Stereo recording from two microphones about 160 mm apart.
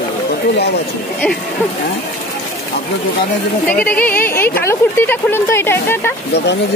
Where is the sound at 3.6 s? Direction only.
10° left (ahead or behind).